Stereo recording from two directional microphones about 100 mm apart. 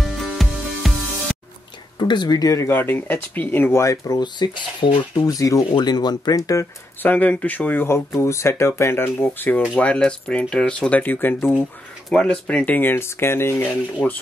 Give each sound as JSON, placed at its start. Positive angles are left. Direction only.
{"t": 0.0, "sound": "music", "side_deg": 0}
{"t": 2.0, "sound": "speech", "side_deg": 45}
{"t": 2.7, "sound": "speech", "side_deg": 20}
{"t": 5.2, "sound": "speech", "side_deg": 35}
{"t": 7.0, "sound": "speech", "side_deg": 15}
{"t": 12.1, "sound": "speech", "side_deg": 10}